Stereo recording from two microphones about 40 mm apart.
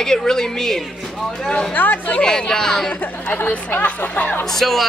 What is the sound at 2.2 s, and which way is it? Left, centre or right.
Speech, centre.